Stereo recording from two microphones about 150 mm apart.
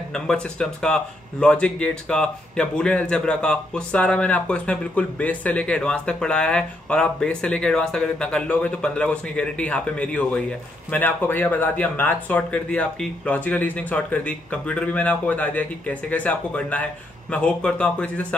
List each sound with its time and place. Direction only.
0.1 s speech: 5° left (ahead or behind)